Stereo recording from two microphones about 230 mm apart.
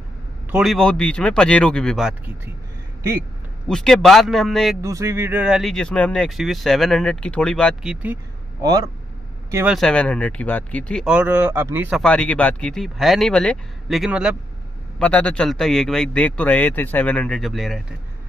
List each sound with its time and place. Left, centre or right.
0.5 s speech: centre
3.6 s speech: centre
4.8 s speech: centre
9.5 s speech: centre
9.8 s speech: centre
11.1 s speech: centre